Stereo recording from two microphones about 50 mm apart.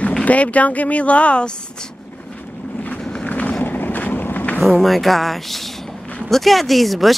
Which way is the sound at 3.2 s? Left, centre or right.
Left.